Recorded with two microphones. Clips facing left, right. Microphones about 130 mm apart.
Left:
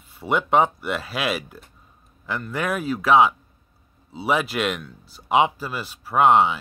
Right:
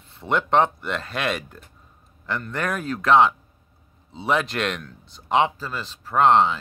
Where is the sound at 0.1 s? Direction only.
5° left (ahead or behind).